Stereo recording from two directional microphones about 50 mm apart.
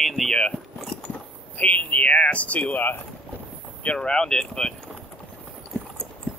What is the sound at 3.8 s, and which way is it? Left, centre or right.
Speech, centre.